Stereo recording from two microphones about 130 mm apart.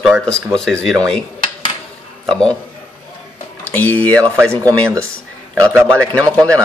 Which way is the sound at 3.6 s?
10° left (ahead or behind).